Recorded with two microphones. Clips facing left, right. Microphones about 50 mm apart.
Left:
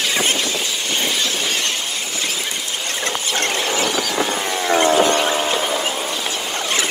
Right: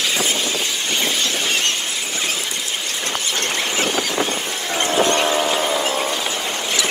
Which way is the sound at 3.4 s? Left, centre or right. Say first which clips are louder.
Left 3 dB; left.